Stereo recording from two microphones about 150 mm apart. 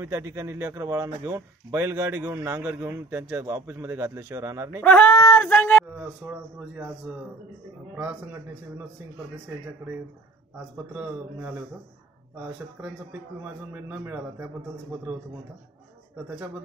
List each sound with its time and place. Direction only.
0.0 s speech: 20° right (ahead or behind)
4.8 s speech: 10° left (ahead or behind)
5.9 s speech: 10° right (ahead or behind)
7.9 s speech: 10° right (ahead or behind)
10.9 s speech: 10° right (ahead or behind)
12.8 s a man's voice: 25° right (ahead or behind)
13.4 s speech: 10° right (ahead or behind)